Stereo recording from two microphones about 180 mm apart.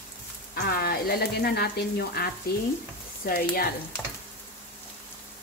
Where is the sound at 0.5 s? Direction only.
60° left (ahead or behind).